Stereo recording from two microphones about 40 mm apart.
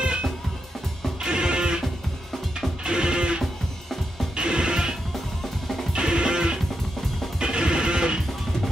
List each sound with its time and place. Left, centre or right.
1.2 s music: right
2.8 s music: right
5.9 s music: right